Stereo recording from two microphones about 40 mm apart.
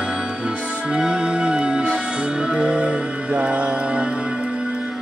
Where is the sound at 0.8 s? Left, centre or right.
Right.